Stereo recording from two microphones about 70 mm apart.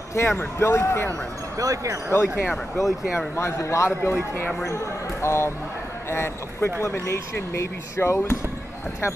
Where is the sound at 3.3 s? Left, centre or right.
Left.